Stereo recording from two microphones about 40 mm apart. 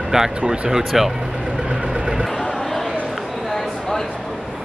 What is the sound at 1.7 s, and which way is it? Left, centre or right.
Vehicle, centre.